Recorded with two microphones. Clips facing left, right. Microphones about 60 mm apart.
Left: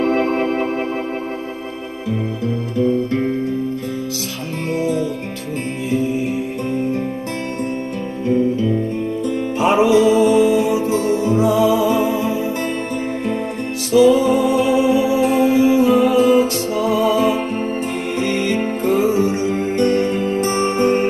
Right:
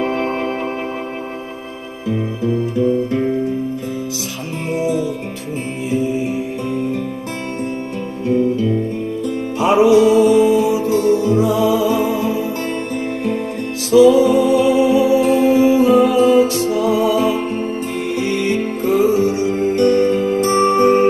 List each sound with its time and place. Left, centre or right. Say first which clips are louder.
0.1 s music: left 2 dB; left
4.7 s music: right 1 dB; centre
9.6 s music: right 2 dB; left
13.9 s music: right 3 dB; left